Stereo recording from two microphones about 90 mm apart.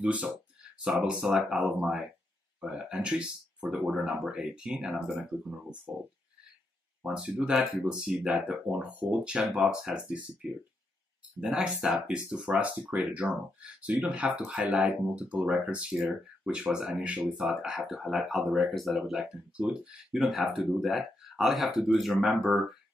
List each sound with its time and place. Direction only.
0.0 s speech: 15° right (ahead or behind)
7.0 s speech: 10° right (ahead or behind)